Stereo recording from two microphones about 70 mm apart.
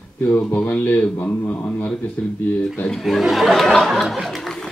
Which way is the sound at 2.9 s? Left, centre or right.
Centre.